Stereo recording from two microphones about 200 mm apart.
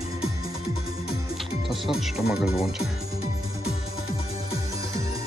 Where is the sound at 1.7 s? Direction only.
Centre (ahead or behind).